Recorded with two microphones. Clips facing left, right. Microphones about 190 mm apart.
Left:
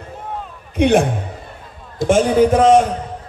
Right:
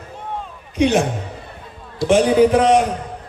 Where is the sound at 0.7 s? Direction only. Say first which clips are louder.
Left 2 dB; 55° left (ahead or behind).